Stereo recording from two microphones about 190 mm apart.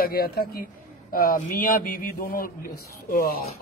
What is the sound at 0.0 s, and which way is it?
Speech, 55° left (ahead or behind).